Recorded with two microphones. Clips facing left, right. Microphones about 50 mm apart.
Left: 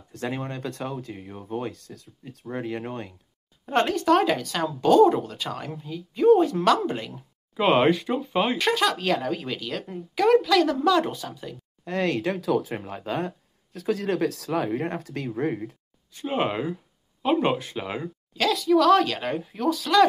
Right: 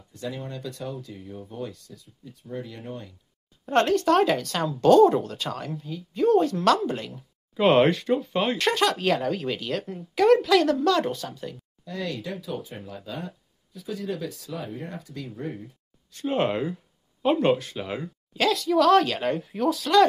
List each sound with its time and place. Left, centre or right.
0.1 s speech: left
2.0 s speech: left
2.6 s speech: left
3.6 s speech: centre
10.8 s speech: centre
11.8 s speech: left
12.8 s speech: left
13.7 s speech: left
16.1 s speech: centre
17.6 s speech: centre
18.3 s speech: centre